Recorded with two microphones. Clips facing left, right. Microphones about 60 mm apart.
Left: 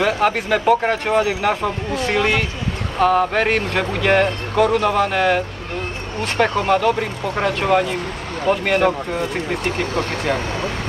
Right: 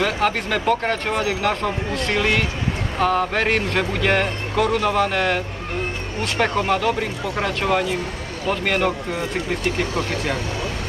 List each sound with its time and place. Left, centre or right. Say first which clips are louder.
0.0 s speech: left 3 dB; centre
6.4 s speech: left 3 dB; centre
9.9 s speech: left 3 dB; left